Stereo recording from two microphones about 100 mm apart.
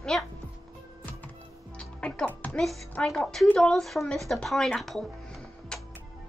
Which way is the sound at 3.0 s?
5° left (ahead or behind).